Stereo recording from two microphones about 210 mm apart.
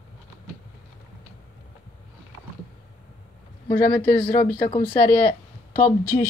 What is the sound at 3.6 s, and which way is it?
Speech, 10° left (ahead or behind).